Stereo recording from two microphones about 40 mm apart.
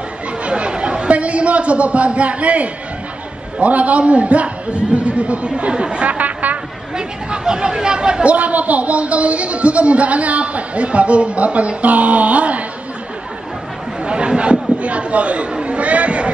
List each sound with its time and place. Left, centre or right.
0.4 s chatter: right
3.5 s speech: right
6.1 s a sound: right
7.0 s speech: right
14.0 s chatter: right